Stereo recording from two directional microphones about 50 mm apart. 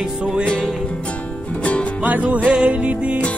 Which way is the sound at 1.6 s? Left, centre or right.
Left.